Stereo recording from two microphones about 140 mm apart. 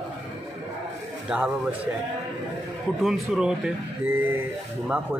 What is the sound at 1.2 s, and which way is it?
Speech, 5° right (ahead or behind).